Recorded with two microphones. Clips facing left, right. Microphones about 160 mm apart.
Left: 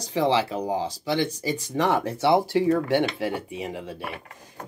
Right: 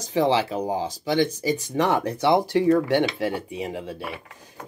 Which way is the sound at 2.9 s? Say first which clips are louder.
Right 1 dB; 15° left (ahead or behind).